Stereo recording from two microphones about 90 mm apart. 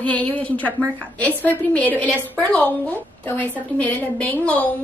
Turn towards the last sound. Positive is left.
turn(degrees=15)  # may be behind; listen again after turning